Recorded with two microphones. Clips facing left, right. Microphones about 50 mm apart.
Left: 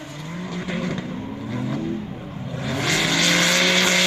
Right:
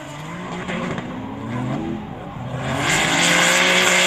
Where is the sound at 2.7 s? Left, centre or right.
Centre.